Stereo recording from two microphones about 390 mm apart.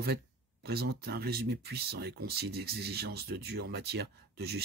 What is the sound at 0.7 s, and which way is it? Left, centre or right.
Speech, right.